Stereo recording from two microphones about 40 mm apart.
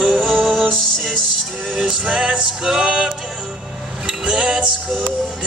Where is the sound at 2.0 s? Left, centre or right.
Centre.